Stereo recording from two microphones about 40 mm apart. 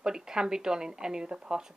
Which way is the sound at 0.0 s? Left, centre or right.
Centre.